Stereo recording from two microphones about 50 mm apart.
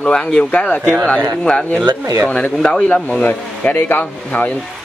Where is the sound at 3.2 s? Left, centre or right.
Left.